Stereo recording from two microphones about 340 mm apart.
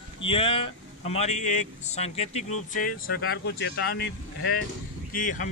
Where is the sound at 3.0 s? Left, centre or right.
Left.